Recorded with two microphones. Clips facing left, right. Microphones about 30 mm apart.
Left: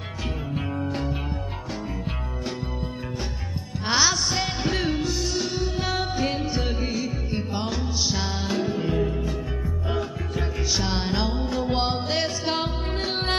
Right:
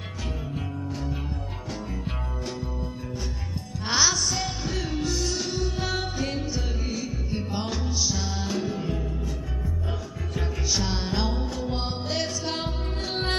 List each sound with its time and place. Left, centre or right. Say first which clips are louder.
0.7 s music: left 5 dB; left
3.8 s music: left 2 dB; centre
4.3 s music: left 4 dB; left
4.9 s music: left 2 dB; centre
6.2 s music: left 4 dB; left
7.5 s music: left 1 dB; centre
8.0 s music: left 2 dB; left
8.9 s music: left 7 dB; left
10.3 s music: left 1 dB; centre
11.6 s music: left 6 dB; left
12.1 s music: left 3 dB; left